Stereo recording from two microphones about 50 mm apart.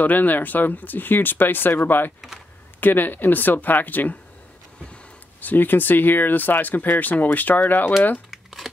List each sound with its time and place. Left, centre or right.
0.0 s speech: left
5.4 s speech: left
8.3 s crumpling: centre